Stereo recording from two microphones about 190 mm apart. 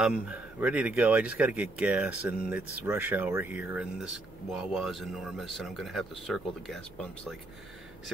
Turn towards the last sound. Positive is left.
turn(degrees=5)  # may be behind; listen again after turning